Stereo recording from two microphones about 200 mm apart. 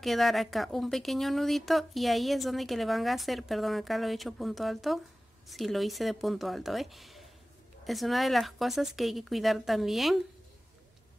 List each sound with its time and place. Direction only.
0.0 s speech: centre (ahead or behind)